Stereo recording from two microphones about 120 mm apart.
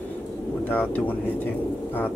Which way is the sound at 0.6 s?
15° left (ahead or behind).